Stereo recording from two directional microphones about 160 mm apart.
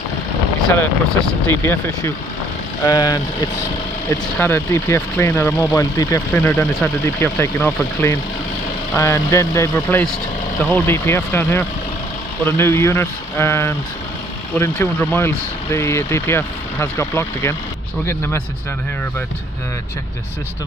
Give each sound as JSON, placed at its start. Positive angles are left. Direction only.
{"t": 1.5, "sound": "speech", "side_deg": 15}